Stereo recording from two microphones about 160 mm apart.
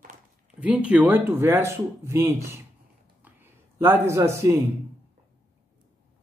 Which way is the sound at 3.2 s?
15° right (ahead or behind).